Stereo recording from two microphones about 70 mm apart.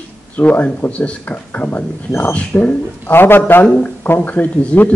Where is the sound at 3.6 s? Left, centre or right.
Centre.